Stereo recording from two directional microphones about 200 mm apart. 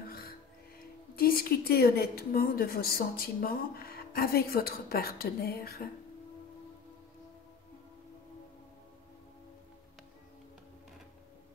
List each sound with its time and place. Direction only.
1.1 s a woman's voice: 45° left (ahead or behind)